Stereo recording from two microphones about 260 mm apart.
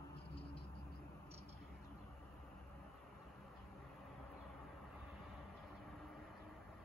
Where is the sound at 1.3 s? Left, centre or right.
Right.